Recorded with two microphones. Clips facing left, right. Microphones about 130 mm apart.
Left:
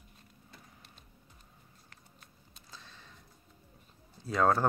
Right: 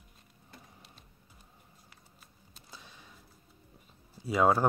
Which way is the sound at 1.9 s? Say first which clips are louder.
Left 1 dB; 5° right (ahead or behind).